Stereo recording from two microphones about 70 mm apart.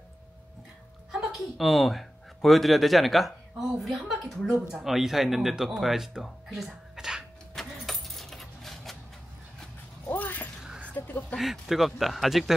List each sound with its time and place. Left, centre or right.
1.1 s speech: centre
7.5 s keys jangling: centre
10.1 s a sound: left
11.0 s speech: left
11.3 s speech: centre